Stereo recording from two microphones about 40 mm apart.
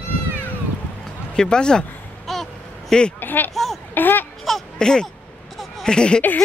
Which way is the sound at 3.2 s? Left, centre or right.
Left.